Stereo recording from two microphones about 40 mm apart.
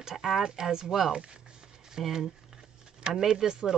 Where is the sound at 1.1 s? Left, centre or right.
Right.